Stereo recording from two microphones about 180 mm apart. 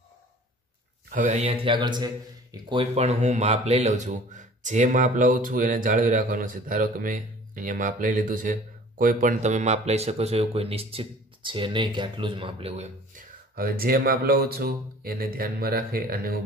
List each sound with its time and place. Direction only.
1.1 s mantra: 45° right (ahead or behind); by 2.0 s 25° right (ahead or behind)
2.5 s speech: 30° right (ahead or behind); by 16.3 s 55° right (ahead or behind)